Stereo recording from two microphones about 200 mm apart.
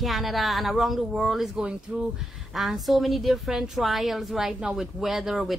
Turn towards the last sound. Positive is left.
turn(degrees=0)  # may be behind; listen again after turning